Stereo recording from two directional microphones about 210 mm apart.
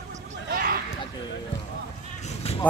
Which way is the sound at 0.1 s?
35° right (ahead or behind).